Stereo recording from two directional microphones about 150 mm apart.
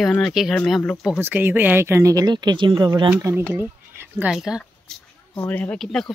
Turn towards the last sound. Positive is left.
turn(degrees=5)  # may be behind; listen again after turning